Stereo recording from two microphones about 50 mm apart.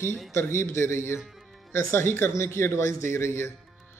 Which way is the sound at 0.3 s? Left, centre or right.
Left.